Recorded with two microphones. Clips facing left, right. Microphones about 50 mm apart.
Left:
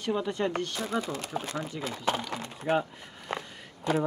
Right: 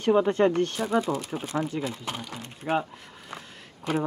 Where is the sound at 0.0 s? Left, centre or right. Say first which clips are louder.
Right 8 dB; right.